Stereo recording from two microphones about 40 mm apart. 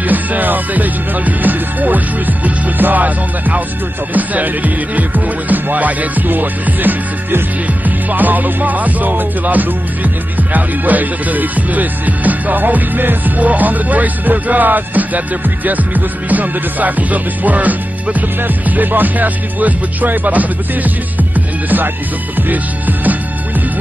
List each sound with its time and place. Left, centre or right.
0.0 s music: right